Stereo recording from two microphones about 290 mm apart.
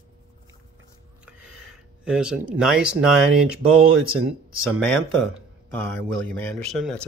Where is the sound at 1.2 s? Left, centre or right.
Centre.